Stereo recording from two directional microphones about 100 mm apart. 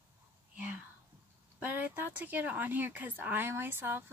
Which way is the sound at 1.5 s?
15° right (ahead or behind).